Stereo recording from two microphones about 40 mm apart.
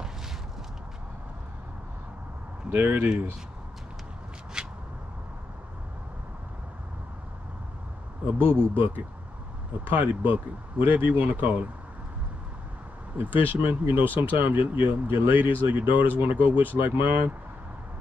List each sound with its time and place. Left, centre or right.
2.7 s speech: right
4.6 s a sound: centre
8.3 s speech: right
13.6 s speech: right